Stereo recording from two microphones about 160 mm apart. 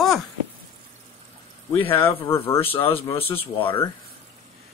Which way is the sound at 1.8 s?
35° left (ahead or behind).